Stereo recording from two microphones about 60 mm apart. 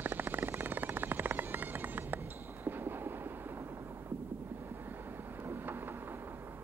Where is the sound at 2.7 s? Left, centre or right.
Right.